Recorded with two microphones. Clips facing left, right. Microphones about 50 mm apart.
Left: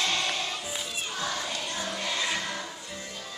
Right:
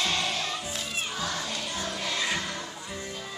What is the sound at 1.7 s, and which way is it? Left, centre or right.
Music, centre.